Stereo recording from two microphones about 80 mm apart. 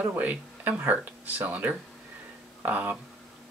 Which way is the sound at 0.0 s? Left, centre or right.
Right.